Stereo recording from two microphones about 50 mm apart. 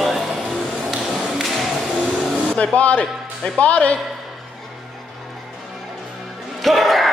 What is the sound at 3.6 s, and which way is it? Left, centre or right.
Speech, left.